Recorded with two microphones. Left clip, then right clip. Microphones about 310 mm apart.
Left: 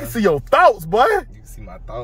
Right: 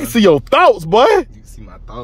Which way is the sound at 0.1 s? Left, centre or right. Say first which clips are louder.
Right 5 dB; right.